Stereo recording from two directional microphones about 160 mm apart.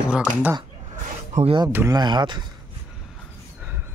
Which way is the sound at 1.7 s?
15° right (ahead or behind).